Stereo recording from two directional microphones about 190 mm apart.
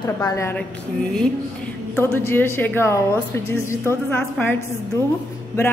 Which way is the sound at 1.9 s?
10° left (ahead or behind).